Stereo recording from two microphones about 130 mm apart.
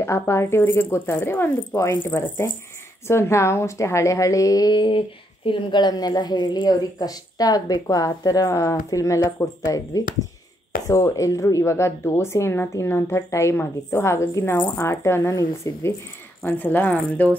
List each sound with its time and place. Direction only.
0.0 s a woman's voice: 20° left (ahead or behind)